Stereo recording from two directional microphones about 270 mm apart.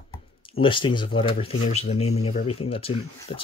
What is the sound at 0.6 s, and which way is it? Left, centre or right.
Speech, centre.